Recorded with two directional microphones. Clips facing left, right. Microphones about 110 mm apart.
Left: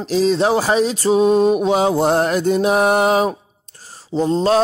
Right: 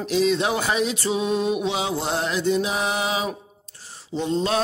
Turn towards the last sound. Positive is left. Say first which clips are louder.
# left 7 dB
turn(degrees=35)  # may be behind; listen again after turning